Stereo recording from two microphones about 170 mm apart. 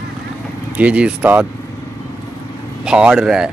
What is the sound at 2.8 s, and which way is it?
Speech, 5° right (ahead or behind).